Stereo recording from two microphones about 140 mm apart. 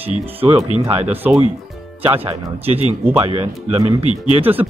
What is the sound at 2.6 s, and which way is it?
Speech, 45° right (ahead or behind).